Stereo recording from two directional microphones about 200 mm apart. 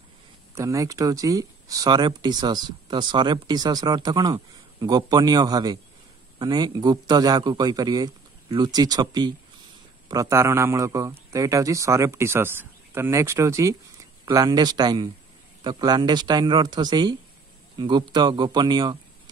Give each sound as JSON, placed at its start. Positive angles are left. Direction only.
{"t": 0.6, "sound": "a man's voice", "side_deg": -15}